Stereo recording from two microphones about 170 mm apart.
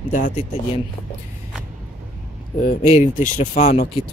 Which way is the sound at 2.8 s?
45° left (ahead or behind).